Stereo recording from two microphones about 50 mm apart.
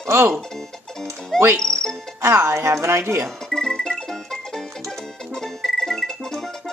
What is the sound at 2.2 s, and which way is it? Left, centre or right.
Speech, right.